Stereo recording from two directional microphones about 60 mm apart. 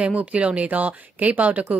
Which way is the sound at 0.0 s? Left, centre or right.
Right.